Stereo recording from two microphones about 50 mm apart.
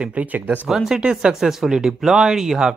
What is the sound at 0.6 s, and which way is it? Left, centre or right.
Speech, centre.